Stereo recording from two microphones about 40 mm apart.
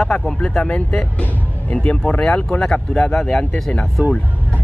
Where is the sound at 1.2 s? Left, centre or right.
Left; by 3.4 s centre.